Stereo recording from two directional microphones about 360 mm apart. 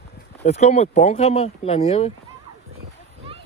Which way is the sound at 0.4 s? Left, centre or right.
Centre.